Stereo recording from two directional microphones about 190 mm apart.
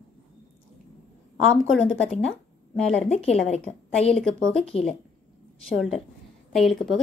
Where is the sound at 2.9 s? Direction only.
35° left (ahead or behind).